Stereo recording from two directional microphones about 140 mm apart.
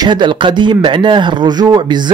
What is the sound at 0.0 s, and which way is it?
Speech, 35° right (ahead or behind).